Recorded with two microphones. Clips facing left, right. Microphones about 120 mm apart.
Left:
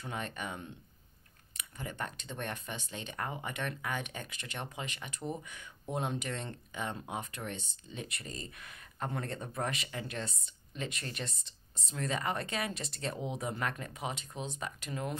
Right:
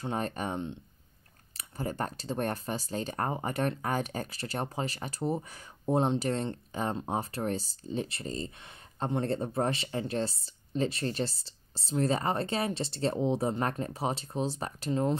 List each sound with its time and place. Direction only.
0.0 s speech: 35° right (ahead or behind)
1.6 s speech: 35° right (ahead or behind)